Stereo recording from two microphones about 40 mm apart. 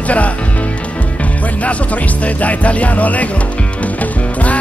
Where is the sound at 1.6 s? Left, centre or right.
Left.